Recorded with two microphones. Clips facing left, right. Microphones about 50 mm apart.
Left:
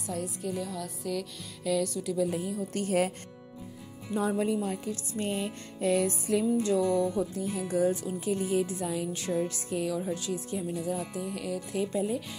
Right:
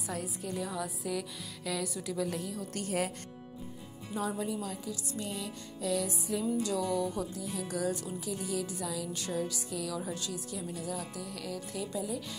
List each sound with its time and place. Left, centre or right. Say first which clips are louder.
0.0 s speech: left 4 dB; centre
2.7 s speech: left 6 dB; left
4.1 s music: left 6 dB; left
6.6 s speech: left 5 dB; left
9.8 s speech: left 6 dB; centre